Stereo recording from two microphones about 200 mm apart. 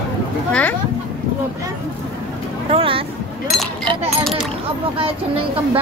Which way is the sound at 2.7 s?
25° right (ahead or behind).